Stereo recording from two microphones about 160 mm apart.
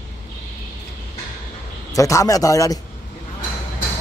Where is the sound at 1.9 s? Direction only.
20° left (ahead or behind).